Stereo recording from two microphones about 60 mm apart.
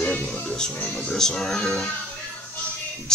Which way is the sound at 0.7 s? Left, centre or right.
Left.